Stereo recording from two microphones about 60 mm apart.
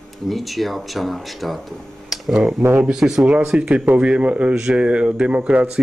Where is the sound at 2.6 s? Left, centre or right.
Right.